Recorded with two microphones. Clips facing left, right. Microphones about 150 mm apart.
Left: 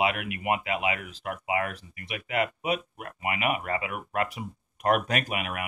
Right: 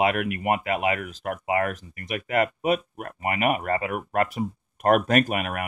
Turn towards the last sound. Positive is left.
turn(degrees=-45)  # may be behind; listen again after turning